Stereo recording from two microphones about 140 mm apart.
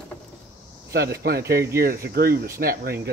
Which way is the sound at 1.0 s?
90° right.